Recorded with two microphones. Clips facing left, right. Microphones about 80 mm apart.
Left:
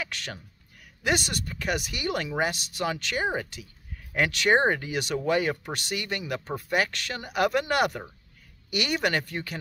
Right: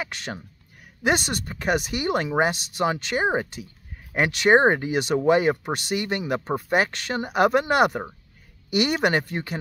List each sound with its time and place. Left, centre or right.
0.0 s speech: right